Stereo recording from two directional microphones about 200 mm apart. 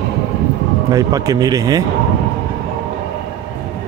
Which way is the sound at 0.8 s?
15° right (ahead or behind).